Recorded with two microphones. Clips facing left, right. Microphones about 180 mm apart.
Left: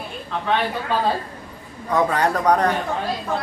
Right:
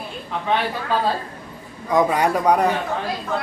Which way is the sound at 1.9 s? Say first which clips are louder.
Right 2 dB; 10° right (ahead or behind).